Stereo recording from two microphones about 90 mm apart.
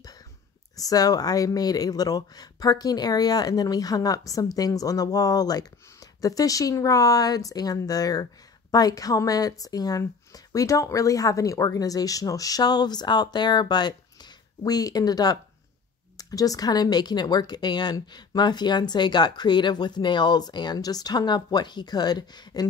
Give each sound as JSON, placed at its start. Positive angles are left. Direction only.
{"t": 0.7, "sound": "speech", "side_deg": 40}